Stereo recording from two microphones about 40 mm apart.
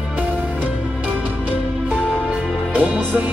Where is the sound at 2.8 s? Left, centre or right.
Right.